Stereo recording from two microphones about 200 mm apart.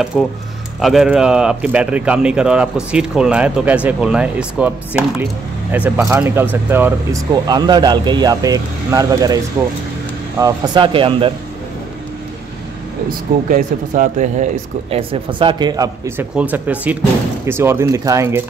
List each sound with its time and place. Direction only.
0.0 s a man's voice: centre (ahead or behind); by 9.4 s 20° right (ahead or behind)
10.4 s speech: 20° right (ahead or behind)
13.5 s speech: 40° right (ahead or behind); by 18.4 s 15° right (ahead or behind)